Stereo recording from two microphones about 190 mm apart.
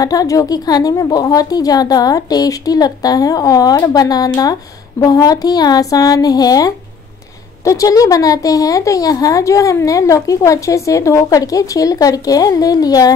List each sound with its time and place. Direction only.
0.0 s a woman's voice: 20° left (ahead or behind)